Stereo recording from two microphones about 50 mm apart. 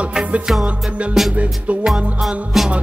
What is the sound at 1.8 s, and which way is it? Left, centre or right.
Music, centre.